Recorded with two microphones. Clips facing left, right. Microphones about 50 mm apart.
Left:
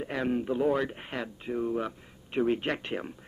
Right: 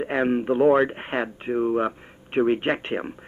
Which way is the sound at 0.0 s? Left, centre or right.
Right.